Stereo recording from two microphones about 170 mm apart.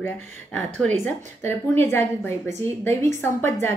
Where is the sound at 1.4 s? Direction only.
15° left (ahead or behind).